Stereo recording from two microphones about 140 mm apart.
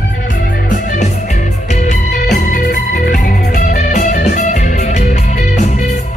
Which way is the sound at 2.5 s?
70° left (ahead or behind).